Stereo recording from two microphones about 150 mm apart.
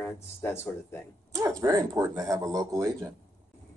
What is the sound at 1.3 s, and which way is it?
Speech, 20° right (ahead or behind).